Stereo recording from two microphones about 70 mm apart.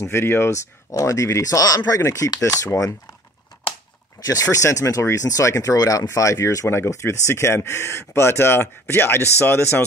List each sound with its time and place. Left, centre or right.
0.0 s speech: left
0.9 s speech: left
4.2 s speech: left
6.7 s speech: left